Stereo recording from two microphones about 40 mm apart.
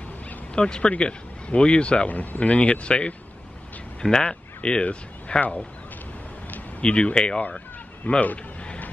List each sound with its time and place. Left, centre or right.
0.6 s speech: left
2.0 s speech: left
6.8 s speech: left
8.1 s speech: left